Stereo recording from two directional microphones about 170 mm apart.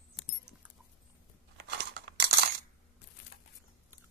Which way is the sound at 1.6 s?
75° right (ahead or behind).